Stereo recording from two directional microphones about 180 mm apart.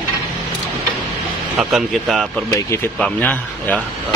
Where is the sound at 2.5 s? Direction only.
15° left (ahead or behind).